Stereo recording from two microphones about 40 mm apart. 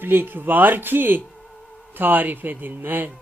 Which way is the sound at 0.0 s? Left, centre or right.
Right.